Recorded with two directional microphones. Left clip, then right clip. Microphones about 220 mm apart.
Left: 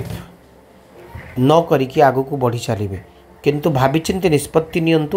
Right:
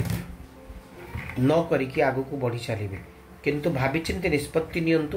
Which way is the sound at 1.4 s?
35° left (ahead or behind).